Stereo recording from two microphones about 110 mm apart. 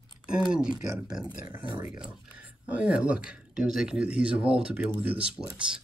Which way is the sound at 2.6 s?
10° right (ahead or behind).